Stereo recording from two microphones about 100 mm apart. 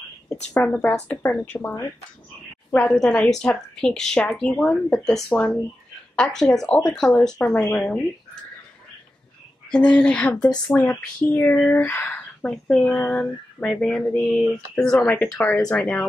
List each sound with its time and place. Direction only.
0.6 s speech: 10° left (ahead or behind)
2.9 s speech: 5° left (ahead or behind)
7.6 s speech: 20° left (ahead or behind)
9.7 s speech: 10° left (ahead or behind)